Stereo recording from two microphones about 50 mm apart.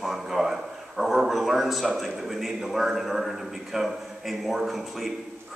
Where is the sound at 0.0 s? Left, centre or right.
Centre.